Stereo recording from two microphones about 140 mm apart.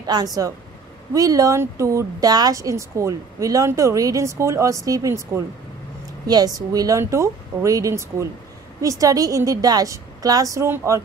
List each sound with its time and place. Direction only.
0.0 s speech: 30° right (ahead or behind)